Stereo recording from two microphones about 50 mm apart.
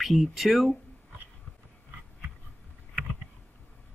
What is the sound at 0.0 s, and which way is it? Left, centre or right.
Speech, centre.